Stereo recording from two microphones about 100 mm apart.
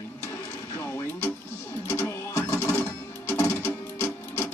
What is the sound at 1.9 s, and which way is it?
Music, 20° left (ahead or behind).